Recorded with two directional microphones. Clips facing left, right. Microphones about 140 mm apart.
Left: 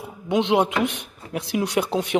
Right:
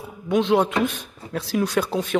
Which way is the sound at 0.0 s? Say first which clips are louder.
Right 1 dB; 20° left (ahead or behind).